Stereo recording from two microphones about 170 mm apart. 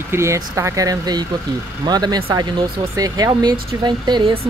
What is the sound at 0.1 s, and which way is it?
Speech, 15° right (ahead or behind).